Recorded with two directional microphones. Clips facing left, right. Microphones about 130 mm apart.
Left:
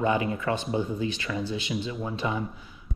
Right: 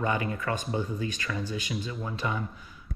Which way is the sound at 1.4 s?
45° right (ahead or behind).